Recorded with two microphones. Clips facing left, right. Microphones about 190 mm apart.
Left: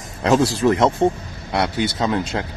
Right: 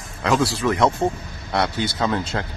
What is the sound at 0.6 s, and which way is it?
Speech, 25° left (ahead or behind).